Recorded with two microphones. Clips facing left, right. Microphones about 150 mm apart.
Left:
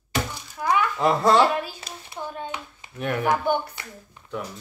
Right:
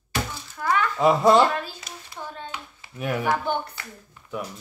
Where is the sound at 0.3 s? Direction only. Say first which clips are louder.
Left 1 dB; 15° left (ahead or behind).